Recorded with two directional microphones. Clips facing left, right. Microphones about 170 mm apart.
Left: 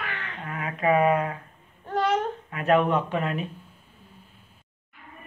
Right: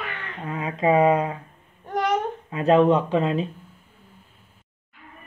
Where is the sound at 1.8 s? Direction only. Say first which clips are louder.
Right 1 dB; 15° right (ahead or behind).